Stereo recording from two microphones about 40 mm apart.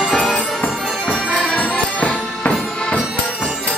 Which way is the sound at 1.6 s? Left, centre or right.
Left.